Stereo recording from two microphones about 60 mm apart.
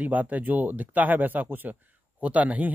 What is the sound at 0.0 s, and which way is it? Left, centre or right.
Speech, right.